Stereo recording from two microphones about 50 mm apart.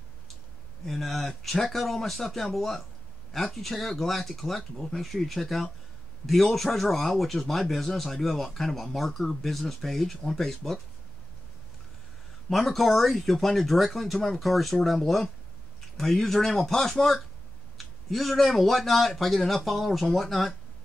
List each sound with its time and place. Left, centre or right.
0.8 s speech: centre
12.4 s speech: centre